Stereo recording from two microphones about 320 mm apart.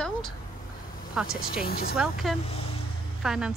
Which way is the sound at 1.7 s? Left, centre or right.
Left.